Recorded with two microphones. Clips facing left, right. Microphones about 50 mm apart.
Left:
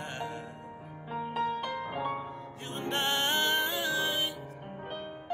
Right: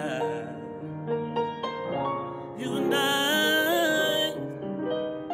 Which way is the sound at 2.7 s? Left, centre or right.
Centre.